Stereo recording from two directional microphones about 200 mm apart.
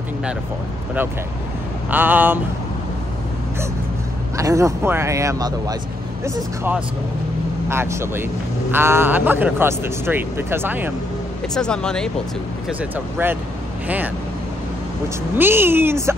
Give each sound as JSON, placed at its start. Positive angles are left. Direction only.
{"t": 1.9, "sound": "speech", "side_deg": -10}
{"t": 4.4, "sound": "speech", "side_deg": -15}
{"t": 11.5, "sound": "speech", "side_deg": 5}
{"t": 12.6, "sound": "speech", "side_deg": -10}
{"t": 15.3, "sound": "speech", "side_deg": -10}